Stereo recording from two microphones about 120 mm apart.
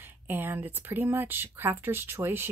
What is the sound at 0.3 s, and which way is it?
Speech, 15° right (ahead or behind).